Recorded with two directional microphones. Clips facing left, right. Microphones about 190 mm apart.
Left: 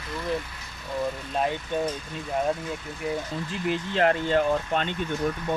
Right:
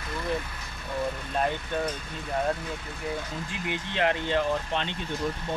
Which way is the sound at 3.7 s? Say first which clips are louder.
Left 4 dB; 40° left (ahead or behind).